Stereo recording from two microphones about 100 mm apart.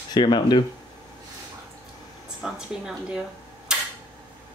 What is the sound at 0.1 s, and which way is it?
Speech, 50° left (ahead or behind).